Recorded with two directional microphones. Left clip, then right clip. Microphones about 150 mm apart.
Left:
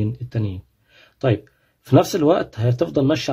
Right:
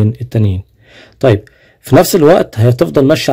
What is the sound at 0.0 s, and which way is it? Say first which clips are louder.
Speech: right 11 dB; 30° right (ahead or behind).